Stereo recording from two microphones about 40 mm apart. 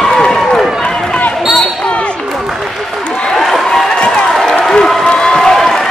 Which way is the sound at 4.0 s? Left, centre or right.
Left.